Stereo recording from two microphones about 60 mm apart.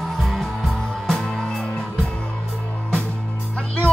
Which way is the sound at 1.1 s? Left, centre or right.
Centre.